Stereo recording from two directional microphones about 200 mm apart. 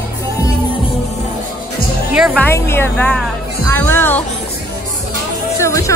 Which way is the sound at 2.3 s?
10° left (ahead or behind).